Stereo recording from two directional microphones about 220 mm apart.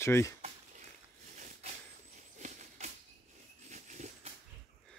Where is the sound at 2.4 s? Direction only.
35° right (ahead or behind).